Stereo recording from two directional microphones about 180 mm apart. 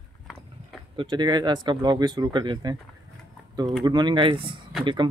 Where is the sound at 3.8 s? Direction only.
25° right (ahead or behind).